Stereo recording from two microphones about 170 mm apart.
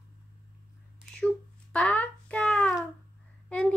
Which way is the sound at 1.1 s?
5° left (ahead or behind).